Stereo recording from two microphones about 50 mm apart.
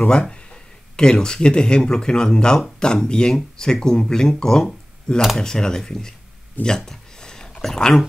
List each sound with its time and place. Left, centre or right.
0.0 s speech: left
6.6 s speech: left
6.9 s a sound: centre